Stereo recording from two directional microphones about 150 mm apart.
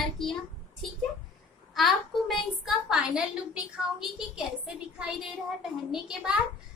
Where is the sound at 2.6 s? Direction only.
5° right (ahead or behind).